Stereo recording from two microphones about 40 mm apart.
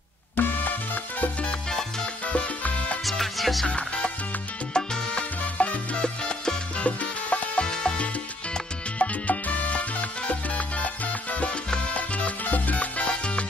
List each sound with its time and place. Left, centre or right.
0.4 s salsa music: left
1.7 s salsa music: centre
2.3 s salsa music: left
3.1 s music: centre
3.6 s music: left
4.7 s salsa music: left
5.6 s salsa music: left
5.9 s salsa music: left
6.9 s salsa music: left
7.6 s music: centre
8.9 s salsa music: left